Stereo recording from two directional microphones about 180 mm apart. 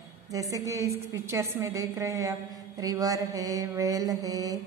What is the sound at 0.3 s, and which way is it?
A woman's voice, 20° right (ahead or behind).